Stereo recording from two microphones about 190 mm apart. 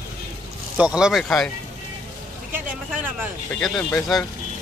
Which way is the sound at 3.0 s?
10° right (ahead or behind).